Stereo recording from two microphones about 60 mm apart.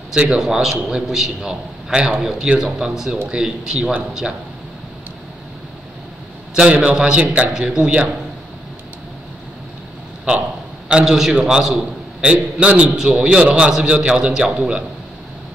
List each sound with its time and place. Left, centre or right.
0.1 s a man's voice: centre
6.5 s a man's voice: centre
10.9 s a man's voice: centre